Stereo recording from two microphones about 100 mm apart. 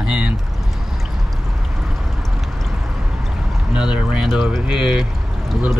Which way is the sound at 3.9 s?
10° right (ahead or behind).